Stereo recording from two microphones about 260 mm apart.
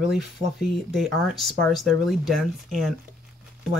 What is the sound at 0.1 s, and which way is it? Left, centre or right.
Speech, centre.